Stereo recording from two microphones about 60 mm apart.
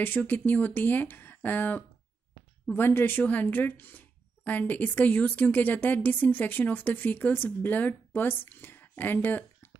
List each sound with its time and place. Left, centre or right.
0.0 s speech: left